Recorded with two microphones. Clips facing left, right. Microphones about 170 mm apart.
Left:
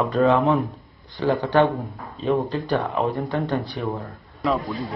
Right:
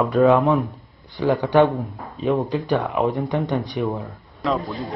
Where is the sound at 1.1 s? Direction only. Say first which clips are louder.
Right 2 dB; 15° right (ahead or behind).